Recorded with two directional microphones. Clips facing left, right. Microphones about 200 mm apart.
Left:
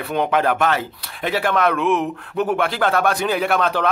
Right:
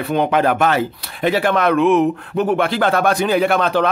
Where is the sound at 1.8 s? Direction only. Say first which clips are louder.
Right 6 dB; 35° right (ahead or behind).